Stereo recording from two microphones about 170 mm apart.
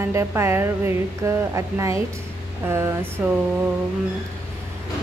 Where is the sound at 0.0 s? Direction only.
15° right (ahead or behind).